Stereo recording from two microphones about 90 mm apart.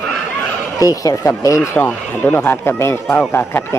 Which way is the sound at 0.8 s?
40° left (ahead or behind).